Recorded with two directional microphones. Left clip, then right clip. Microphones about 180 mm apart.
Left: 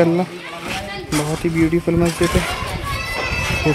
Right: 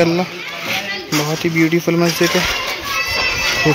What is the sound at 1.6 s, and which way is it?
Speech, 5° left (ahead or behind).